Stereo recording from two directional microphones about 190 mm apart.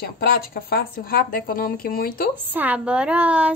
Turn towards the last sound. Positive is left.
turn(degrees=-5)  # may be behind; listen again after turning